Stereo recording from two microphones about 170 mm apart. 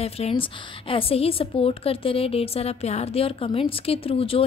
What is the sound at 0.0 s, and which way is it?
A woman's voice, 35° left (ahead or behind).